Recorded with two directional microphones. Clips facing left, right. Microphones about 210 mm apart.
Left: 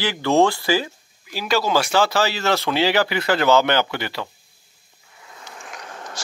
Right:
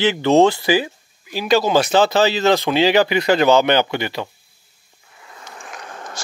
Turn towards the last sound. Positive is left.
turn(degrees=-50)  # may be behind; listen again after turning